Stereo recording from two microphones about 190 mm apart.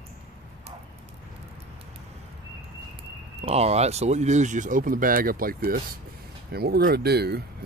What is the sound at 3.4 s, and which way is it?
Speech, 35° right (ahead or behind).